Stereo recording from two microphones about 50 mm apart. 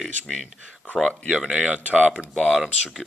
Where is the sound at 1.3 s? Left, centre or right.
Centre.